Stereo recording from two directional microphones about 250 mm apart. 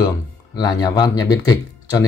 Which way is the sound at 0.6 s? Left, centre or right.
Centre.